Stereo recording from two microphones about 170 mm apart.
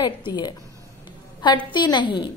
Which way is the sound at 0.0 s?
25° left (ahead or behind).